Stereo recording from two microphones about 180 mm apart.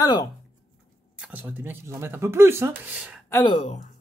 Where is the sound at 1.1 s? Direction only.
10° right (ahead or behind).